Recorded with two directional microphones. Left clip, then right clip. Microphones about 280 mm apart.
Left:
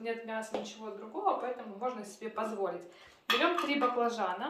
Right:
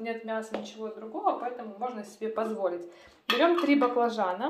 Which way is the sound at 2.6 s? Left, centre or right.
Right.